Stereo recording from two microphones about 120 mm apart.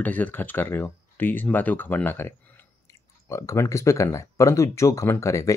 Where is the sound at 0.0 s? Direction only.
15° left (ahead or behind).